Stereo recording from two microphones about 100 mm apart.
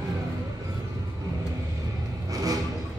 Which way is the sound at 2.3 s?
35° right (ahead or behind).